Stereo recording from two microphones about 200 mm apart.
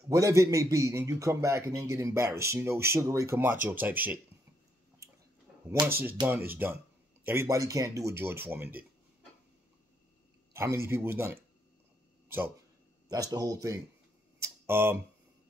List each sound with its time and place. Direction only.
0.1 s a man's voice: 15° right (ahead or behind)
5.7 s a man's voice: 10° right (ahead or behind)
6.5 s a man's voice: 10° right (ahead or behind)
10.5 s a man's voice: 15° right (ahead or behind)
14.4 s a sound: 10° right (ahead or behind)